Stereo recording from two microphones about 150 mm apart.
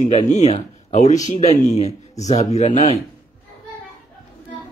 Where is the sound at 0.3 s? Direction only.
50° left (ahead or behind).